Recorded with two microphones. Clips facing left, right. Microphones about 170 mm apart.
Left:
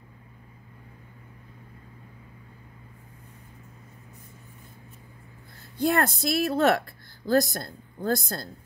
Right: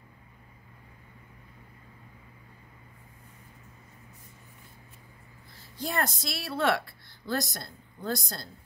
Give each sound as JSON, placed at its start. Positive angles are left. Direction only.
{"t": 5.6, "sound": "a woman's voice", "side_deg": 55}